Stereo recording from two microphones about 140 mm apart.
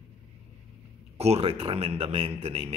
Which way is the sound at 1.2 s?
45° right (ahead or behind).